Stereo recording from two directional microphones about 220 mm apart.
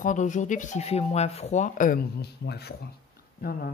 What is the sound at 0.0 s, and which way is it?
Speech, 35° left (ahead or behind).